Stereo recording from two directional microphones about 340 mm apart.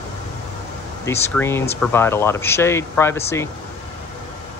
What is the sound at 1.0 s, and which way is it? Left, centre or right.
Speech, centre.